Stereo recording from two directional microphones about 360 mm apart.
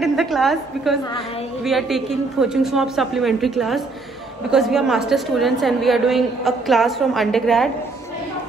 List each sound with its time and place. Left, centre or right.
0.0 s a woman's voice: centre